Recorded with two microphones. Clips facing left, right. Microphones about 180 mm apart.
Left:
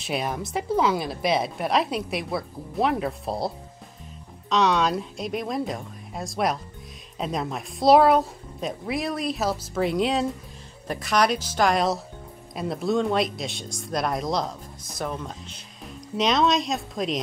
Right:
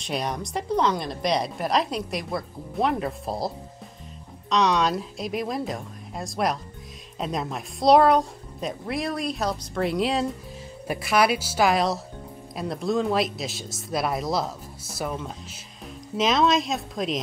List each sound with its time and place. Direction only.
0.0 s a woman's voice: 5° left (ahead or behind)